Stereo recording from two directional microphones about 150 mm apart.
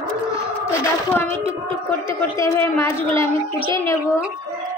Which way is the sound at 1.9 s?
20° left (ahead or behind).